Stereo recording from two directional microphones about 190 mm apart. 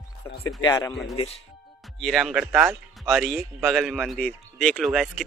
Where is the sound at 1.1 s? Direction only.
30° left (ahead or behind).